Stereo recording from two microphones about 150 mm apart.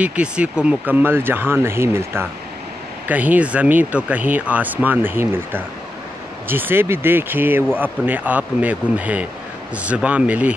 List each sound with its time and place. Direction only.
0.0 s speech: 10° right (ahead or behind)